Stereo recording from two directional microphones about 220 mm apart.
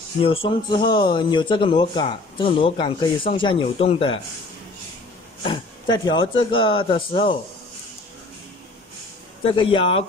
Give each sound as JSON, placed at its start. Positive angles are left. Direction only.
{"t": 0.2, "sound": "speech", "side_deg": 25}
{"t": 5.4, "sound": "speech", "side_deg": 20}
{"t": 9.4, "sound": "speech", "side_deg": 25}